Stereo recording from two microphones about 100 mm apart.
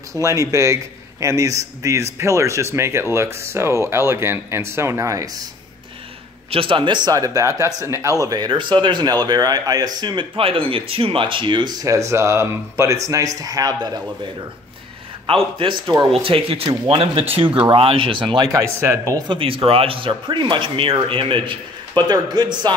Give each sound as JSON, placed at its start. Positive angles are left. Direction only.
{"t": 0.1, "sound": "speech", "side_deg": -35}
{"t": 6.5, "sound": "speech", "side_deg": -60}
{"t": 8.5, "sound": "speech", "side_deg": -55}
{"t": 10.3, "sound": "speech", "side_deg": -65}
{"t": 11.8, "sound": "speech", "side_deg": -30}
{"t": 15.3, "sound": "speech", "side_deg": -65}
{"t": 18.5, "sound": "speech", "side_deg": -25}
{"t": 19.1, "sound": "speech", "side_deg": -55}